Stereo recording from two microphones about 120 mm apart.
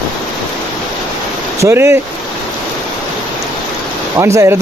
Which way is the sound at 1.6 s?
20° right (ahead or behind).